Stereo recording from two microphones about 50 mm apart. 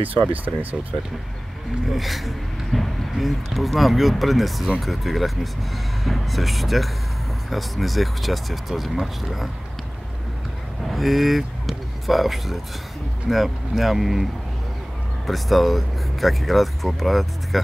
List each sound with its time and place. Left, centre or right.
0.3 s speech: right
1.9 s speech: centre
10.9 s speech: centre
15.2 s speech: centre